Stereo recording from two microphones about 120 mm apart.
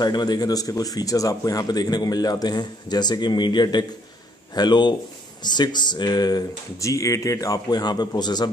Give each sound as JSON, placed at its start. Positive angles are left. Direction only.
{"t": 0.0, "sound": "speech", "side_deg": 35}